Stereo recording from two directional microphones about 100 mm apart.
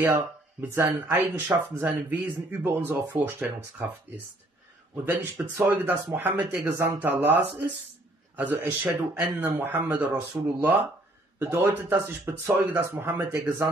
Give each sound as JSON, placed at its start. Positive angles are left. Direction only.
{"t": 0.1, "sound": "speech", "side_deg": -25}
{"t": 5.0, "sound": "speech", "side_deg": -20}